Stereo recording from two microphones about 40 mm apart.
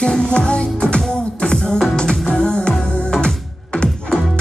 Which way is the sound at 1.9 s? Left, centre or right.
Left.